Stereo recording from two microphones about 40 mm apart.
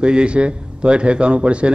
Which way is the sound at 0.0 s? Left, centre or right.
Right.